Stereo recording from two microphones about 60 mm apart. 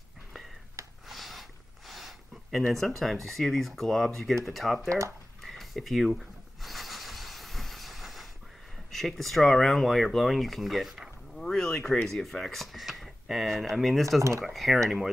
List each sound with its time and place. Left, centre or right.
1.0 s a sound: centre
3.0 s speech: centre
4.8 s speech: right
5.4 s a sound: centre
8.9 s speech: centre
11.4 s speech: centre